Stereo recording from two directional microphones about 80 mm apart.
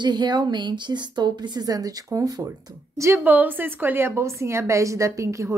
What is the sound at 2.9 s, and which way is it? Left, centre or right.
Speech, right.